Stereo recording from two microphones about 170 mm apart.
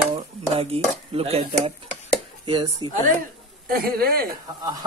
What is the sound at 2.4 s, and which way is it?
Speech, 30° right (ahead or behind).